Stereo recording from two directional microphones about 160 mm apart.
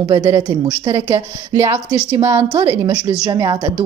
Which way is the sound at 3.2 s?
25° right (ahead or behind).